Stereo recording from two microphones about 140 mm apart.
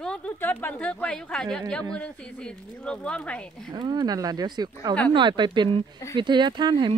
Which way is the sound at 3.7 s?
30° right (ahead or behind).